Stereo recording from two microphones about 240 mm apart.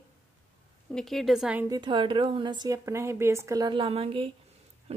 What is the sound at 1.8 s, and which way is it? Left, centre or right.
A woman's voice, centre.